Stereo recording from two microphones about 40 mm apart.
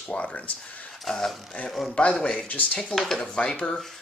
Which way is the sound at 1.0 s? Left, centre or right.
Centre.